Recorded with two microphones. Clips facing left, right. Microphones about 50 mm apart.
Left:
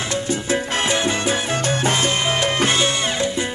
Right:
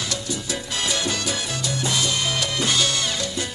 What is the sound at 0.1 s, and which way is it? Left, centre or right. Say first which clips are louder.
Salsa music: left 7 dB; left.